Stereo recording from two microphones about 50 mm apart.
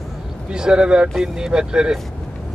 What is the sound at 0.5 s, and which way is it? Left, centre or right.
Speech, centre.